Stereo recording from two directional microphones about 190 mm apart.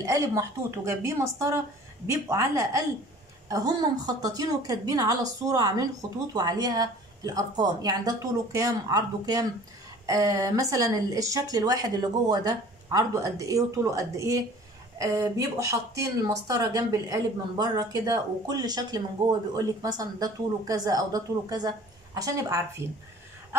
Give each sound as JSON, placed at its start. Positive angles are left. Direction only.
{"t": 0.0, "sound": "speech", "side_deg": -15}